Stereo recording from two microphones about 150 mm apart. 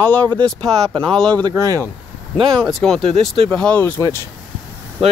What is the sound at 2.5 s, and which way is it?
Speech, centre (ahead or behind).